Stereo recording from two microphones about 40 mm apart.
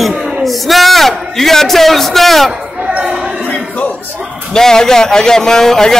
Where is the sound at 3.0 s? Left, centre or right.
Right.